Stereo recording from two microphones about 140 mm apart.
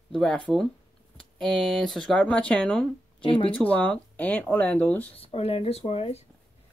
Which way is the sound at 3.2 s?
40° left (ahead or behind).